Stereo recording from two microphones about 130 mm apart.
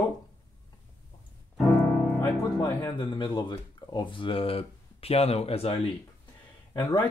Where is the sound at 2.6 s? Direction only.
25° left (ahead or behind).